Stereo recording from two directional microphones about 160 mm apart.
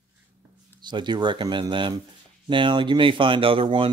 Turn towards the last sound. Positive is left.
turn(degrees=-35)  # may be behind; listen again after turning